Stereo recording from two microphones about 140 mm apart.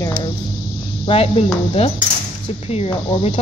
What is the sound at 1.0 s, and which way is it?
Speech, 45° left (ahead or behind).